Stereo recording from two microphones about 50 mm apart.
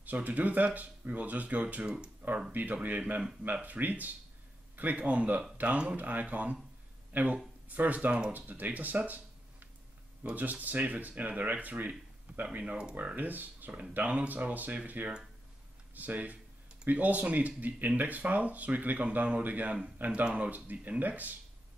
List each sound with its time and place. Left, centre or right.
0.0 s speech: right